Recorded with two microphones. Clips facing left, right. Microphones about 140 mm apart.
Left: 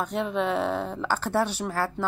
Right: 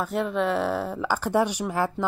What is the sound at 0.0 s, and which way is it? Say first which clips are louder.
A woman's voice: right 2 dB; centre (ahead or behind).